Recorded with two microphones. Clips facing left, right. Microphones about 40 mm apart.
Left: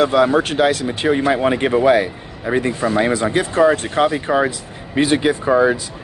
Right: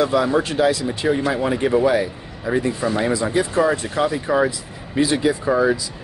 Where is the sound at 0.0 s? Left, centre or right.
Left.